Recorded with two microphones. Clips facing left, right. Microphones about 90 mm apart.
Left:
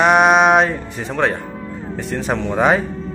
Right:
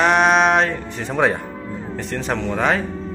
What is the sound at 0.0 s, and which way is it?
Music, 10° left (ahead or behind).